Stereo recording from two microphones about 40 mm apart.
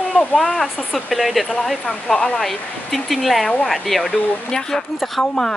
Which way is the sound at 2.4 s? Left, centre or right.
Centre.